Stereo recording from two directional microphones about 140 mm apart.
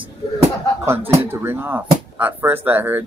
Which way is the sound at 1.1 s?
15° right (ahead or behind).